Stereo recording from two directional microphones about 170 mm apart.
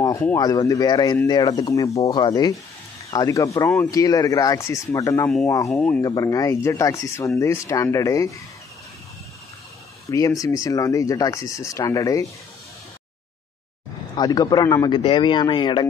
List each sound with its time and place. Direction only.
0.4 s speech: 20° left (ahead or behind)
5.7 s speech: 5° left (ahead or behind)
5.9 s speech: 20° left (ahead or behind)
10.1 s speech: 20° left (ahead or behind)
14.1 s speech: 25° left (ahead or behind)